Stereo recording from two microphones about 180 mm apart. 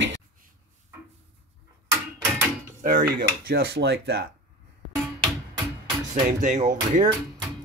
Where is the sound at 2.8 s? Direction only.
45° right (ahead or behind).